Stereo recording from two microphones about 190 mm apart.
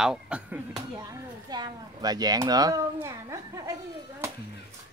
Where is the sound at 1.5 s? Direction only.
20° right (ahead or behind).